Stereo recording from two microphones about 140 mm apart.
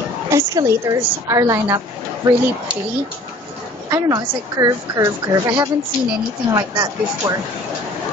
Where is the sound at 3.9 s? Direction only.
20° right (ahead or behind).